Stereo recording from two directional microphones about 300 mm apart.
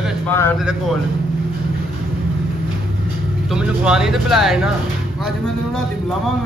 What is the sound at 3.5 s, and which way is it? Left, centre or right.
Speech, centre.